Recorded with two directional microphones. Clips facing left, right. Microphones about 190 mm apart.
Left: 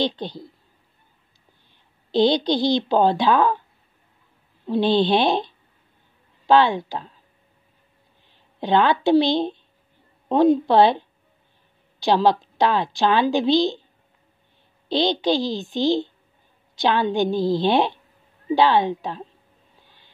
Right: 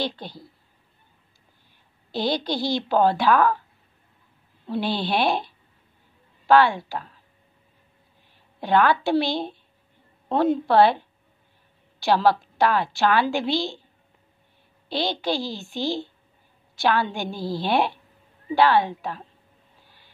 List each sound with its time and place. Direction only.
2.3 s a woman's voice: 20° left (ahead or behind)
4.8 s speech: 5° right (ahead or behind)
5.1 s a woman's voice: 20° left (ahead or behind)
6.4 s a woman's voice: 20° left (ahead or behind)
8.5 s a woman's voice: 20° left (ahead or behind)
14.9 s a woman's voice: 5° right (ahead or behind)
15.2 s a woman's voice: 20° left (ahead or behind)
17.4 s speech: 5° right (ahead or behind)
17.6 s a woman's voice: 20° left (ahead or behind)